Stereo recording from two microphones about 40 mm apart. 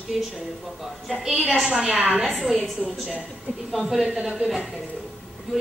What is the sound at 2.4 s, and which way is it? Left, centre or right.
Speech, centre.